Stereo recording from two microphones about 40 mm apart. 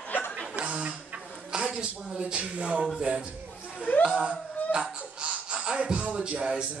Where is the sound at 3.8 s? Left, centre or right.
Left.